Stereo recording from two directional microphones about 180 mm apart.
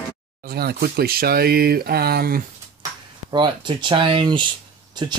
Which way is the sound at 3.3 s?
25° right (ahead or behind).